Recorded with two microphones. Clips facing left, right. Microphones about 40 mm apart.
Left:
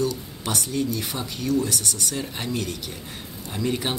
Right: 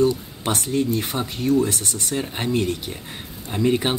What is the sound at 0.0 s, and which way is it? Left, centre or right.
Speech, right.